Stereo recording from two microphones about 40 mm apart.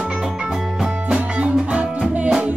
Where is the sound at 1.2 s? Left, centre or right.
Right.